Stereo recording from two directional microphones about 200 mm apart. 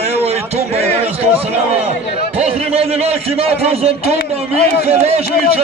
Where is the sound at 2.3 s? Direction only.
30° right (ahead or behind).